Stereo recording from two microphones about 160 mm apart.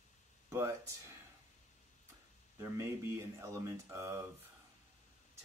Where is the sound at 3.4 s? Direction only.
20° right (ahead or behind).